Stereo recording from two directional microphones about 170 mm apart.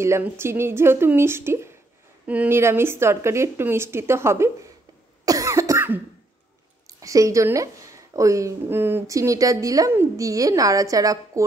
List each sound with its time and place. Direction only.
0.0 s speech: 15° right (ahead or behind)
5.2 s cough: 20° right (ahead or behind)
6.9 s a woman's voice: 20° right (ahead or behind)